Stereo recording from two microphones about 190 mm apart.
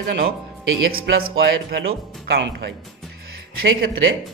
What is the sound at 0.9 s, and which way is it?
Speech, 60° right (ahead or behind).